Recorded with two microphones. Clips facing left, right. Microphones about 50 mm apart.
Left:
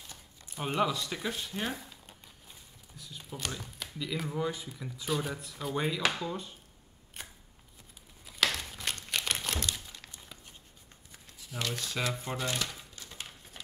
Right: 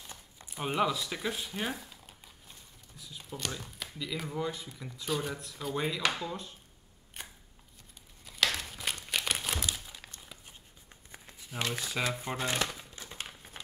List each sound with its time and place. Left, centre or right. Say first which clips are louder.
0.5 s speech: even; centre
8.3 s crumpling: even; centre
10.2 s dog: even; centre
11.1 s a sound: right 1 dB; right
12.1 s speech: right 1 dB; centre
12.4 s crumpling: right 2 dB; right